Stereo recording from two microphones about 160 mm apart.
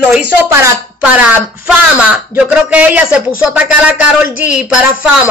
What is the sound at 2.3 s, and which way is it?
Speech, 10° right (ahead or behind).